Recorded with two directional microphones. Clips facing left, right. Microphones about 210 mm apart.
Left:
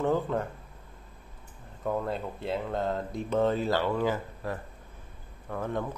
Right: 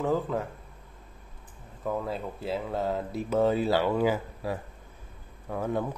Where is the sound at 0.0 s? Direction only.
Centre (ahead or behind).